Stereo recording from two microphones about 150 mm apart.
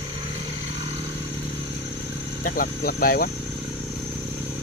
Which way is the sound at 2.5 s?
75° left (ahead or behind).